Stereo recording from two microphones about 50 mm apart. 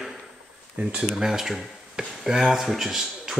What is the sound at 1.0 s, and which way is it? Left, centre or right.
Speech, centre.